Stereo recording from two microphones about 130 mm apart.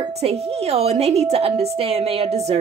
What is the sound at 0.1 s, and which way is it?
Speech, 50° right (ahead or behind).